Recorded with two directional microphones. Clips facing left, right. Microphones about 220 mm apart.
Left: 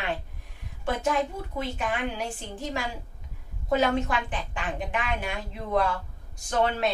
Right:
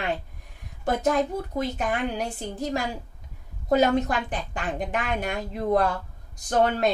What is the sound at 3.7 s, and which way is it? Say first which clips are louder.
A woman's voice: right 3 dB; 40° right (ahead or behind).